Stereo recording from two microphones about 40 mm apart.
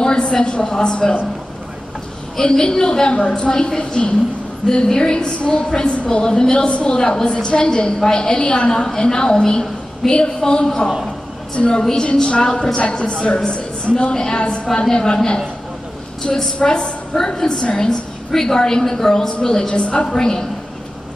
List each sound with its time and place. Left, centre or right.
0.0 s a woman's voice: left
2.3 s a woman's voice: centre
6.5 s a woman's voice: left
11.8 s a woman's voice: centre; by 14.1 s left
14.1 s a woman's voice: centre
16.2 s a woman's voice: centre
19.8 s a woman's voice: left
20.2 s a woman's voice: centre